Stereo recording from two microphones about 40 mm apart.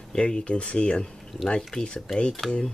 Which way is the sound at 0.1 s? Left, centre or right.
Left.